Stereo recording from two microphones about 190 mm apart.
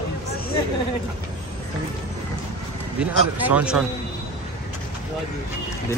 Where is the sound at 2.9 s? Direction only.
5° right (ahead or behind).